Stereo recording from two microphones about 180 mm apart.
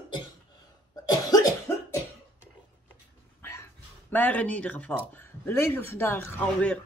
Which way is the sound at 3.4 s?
15° left (ahead or behind).